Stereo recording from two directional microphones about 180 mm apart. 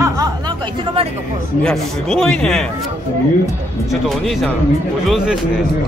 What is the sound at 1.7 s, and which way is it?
A man's voice, 5° left (ahead or behind).